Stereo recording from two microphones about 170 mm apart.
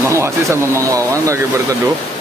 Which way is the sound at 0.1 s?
15° right (ahead or behind).